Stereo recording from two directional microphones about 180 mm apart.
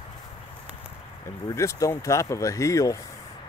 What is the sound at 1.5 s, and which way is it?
Speech, 15° left (ahead or behind).